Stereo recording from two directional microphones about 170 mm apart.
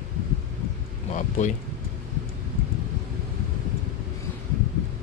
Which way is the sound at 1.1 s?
45° left (ahead or behind).